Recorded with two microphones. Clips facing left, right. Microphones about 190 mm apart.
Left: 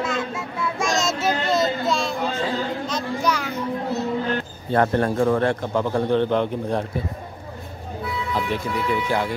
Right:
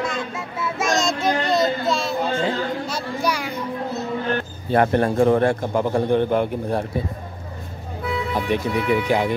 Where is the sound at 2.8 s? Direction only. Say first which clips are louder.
Left 1 dB; 10° right (ahead or behind).